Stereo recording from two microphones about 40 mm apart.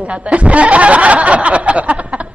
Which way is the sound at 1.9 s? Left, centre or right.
Right.